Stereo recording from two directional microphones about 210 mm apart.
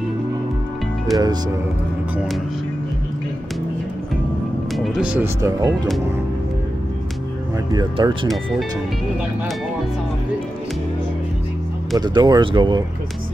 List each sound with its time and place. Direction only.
1.1 s speech: 20° right (ahead or behind)
4.7 s speech: centre (ahead or behind); by 5.8 s 15° right (ahead or behind)
7.7 s speech: 20° right (ahead or behind)
12.0 s speech: 20° right (ahead or behind)